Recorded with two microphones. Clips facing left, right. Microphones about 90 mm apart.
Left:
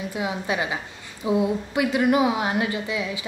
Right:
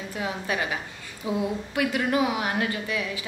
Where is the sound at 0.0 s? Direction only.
20° left (ahead or behind).